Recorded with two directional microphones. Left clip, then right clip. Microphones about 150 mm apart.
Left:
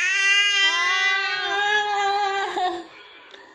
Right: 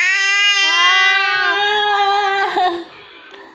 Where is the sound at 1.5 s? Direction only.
20° right (ahead or behind).